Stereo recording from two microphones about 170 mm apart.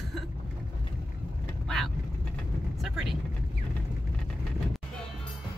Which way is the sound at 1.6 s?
Centre (ahead or behind).